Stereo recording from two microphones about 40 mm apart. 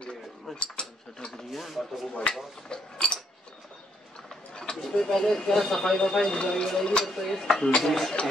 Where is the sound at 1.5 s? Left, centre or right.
Centre.